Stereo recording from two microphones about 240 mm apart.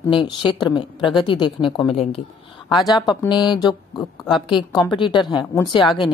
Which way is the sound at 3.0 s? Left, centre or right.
Centre.